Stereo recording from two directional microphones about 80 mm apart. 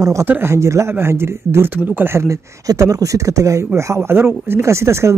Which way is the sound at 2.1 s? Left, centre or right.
Right.